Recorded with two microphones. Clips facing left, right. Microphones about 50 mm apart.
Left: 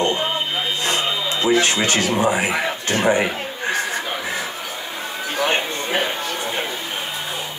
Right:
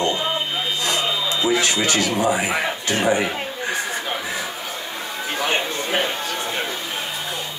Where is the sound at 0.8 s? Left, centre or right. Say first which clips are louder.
Even; left.